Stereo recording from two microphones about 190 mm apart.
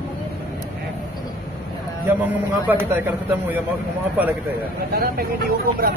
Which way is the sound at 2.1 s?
10° right (ahead or behind).